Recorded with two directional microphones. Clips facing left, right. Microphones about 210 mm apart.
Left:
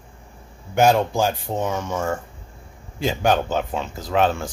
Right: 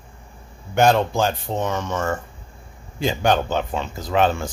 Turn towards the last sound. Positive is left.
turn(degrees=0)  # may be behind; listen again after turning